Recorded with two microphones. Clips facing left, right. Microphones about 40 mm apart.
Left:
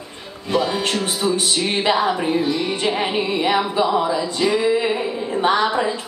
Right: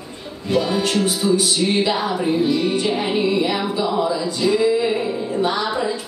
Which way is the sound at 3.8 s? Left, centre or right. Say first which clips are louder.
Left 2 dB; left.